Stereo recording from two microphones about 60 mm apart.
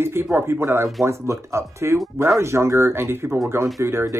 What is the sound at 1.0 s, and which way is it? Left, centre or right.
Speech, right.